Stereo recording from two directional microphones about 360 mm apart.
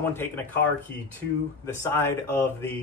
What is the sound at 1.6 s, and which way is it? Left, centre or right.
Speech, centre.